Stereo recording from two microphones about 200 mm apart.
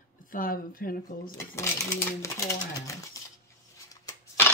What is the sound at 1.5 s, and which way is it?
Speech, 10° left (ahead or behind).